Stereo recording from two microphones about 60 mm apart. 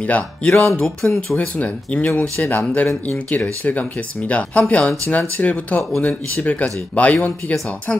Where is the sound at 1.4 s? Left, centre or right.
Left.